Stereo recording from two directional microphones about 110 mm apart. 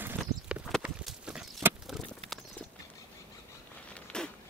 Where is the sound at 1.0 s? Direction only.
5° right (ahead or behind).